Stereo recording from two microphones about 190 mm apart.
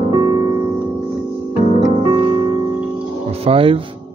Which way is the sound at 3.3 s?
30° right (ahead or behind).